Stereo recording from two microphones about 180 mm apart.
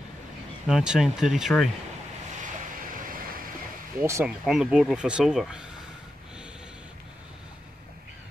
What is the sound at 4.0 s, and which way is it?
Speech, 15° right (ahead or behind).